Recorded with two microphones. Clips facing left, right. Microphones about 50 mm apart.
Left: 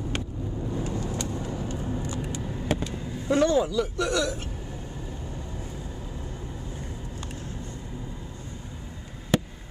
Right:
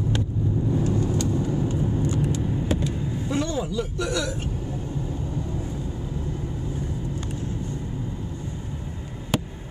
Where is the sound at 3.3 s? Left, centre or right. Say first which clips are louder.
Left 6 dB; left.